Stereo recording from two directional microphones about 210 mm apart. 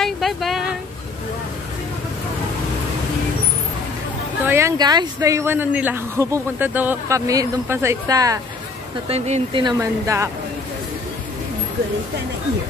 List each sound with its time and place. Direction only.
0.0 s a sound: centre (ahead or behind)
4.5 s speech: 15° right (ahead or behind)
9.1 s speech: 30° right (ahead or behind); by 10.3 s 15° right (ahead or behind)